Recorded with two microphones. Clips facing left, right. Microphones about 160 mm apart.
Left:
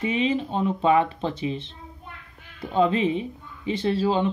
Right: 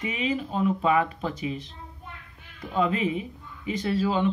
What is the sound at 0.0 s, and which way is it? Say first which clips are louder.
Speech: left 5 dB; 30° left (ahead or behind).